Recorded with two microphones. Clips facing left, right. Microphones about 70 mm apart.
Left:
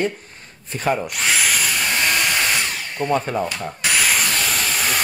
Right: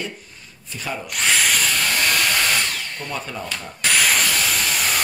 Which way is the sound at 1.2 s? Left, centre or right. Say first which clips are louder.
Even; centre.